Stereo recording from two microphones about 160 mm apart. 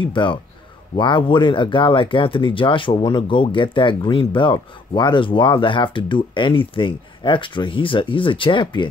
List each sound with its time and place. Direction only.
0.0 s speech: 30° left (ahead or behind)